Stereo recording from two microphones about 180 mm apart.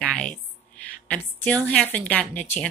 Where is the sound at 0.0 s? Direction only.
5° left (ahead or behind).